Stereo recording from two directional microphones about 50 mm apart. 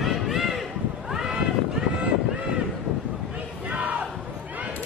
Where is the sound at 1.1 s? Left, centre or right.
Centre.